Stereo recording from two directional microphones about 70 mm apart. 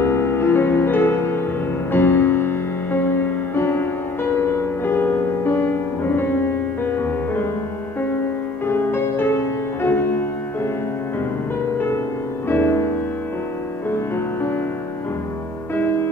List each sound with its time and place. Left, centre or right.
0.0 s music: left
8.6 s music: left
12.4 s music: left
15.7 s music: left